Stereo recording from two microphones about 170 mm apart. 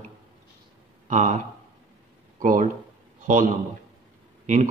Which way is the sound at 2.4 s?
50° right (ahead or behind).